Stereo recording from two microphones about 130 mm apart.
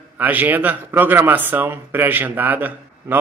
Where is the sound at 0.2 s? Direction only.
15° right (ahead or behind).